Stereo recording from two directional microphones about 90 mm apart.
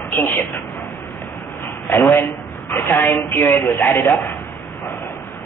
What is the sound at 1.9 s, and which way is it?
A woman's voice, 30° left (ahead or behind).